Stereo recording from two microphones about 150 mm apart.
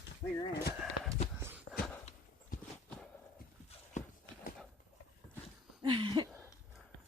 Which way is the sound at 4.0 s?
55° left (ahead or behind).